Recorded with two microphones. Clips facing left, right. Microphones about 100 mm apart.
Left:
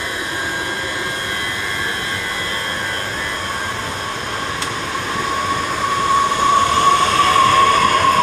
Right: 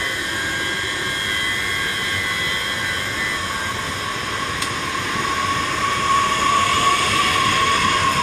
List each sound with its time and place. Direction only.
6.7 s train: 25° left (ahead or behind); by 8.2 s 50° left (ahead or behind)